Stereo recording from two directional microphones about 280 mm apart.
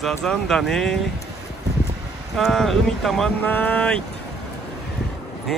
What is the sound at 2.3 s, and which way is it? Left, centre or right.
Speech, centre.